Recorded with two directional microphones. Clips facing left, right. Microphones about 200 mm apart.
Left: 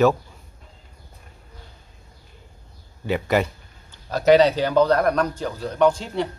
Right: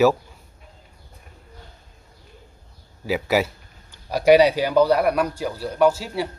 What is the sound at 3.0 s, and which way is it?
Speech, 5° right (ahead or behind).